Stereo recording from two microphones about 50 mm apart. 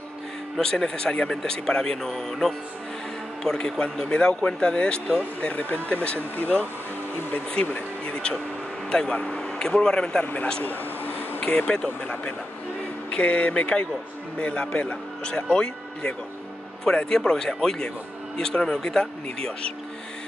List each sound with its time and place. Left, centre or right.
0.6 s speech: centre; by 6.6 s left
8.1 s a sound: centre
8.8 s speech: centre
10.2 s speech: left
10.6 s vehicle: left
11.4 s speech: left